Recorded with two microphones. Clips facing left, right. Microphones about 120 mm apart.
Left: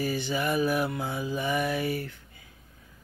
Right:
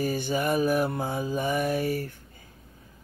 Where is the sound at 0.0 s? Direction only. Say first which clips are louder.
Right 2 dB; 45° right (ahead or behind).